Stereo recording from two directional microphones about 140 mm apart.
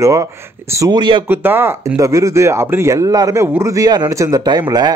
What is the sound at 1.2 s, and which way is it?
Speech, 15° right (ahead or behind).